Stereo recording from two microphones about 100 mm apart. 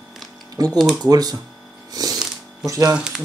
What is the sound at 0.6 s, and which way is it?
Speech, 40° right (ahead or behind).